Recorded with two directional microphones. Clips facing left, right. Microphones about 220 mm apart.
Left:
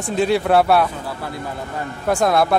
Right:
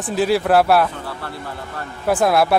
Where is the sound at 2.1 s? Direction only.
5° right (ahead or behind).